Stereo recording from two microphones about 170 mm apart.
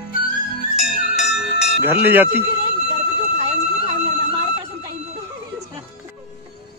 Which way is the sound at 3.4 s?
35° right (ahead or behind).